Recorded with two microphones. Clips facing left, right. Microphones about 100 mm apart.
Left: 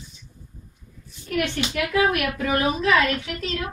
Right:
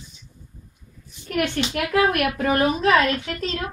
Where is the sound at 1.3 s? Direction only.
50° right (ahead or behind).